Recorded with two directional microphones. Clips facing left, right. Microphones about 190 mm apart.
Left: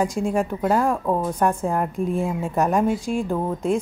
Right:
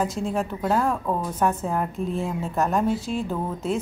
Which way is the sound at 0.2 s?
10° left (ahead or behind).